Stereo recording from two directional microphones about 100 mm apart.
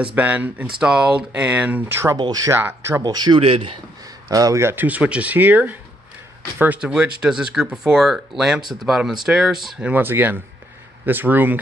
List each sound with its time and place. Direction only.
0.0 s speech: 15° right (ahead or behind)
2.1 s speech: 50° right (ahead or behind)
2.4 s speech: 25° right (ahead or behind)
3.0 s speech: 45° right (ahead or behind)
3.3 s a man's voice: 70° right (ahead or behind)
4.0 s speech: 35° right (ahead or behind); by 9.8 s 5° right (ahead or behind)
9.8 s speech: 20° right (ahead or behind)